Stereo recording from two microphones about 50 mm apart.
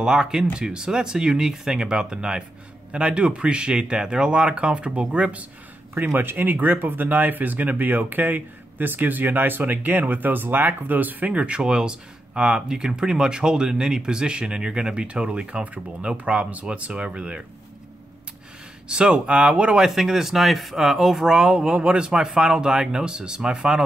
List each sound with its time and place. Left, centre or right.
0.0 s speech: centre; by 5.5 s right
6.0 s speech: right; by 17.5 s centre
18.9 s speech: centre
19.9 s speech: centre